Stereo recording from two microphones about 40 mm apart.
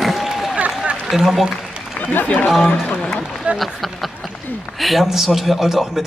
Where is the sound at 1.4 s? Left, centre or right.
Centre.